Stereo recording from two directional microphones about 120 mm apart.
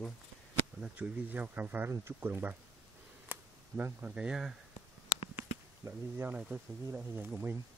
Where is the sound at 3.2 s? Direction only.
15° right (ahead or behind).